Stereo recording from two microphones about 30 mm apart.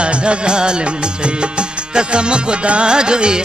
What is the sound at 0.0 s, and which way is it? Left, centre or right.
Music, right.